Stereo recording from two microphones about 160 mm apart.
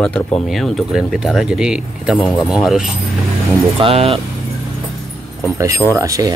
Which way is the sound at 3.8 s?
40° right (ahead or behind).